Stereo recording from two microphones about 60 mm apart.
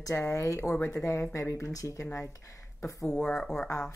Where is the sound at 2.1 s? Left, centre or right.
Left.